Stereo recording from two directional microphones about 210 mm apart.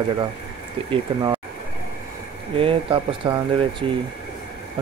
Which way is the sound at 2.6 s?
25° right (ahead or behind).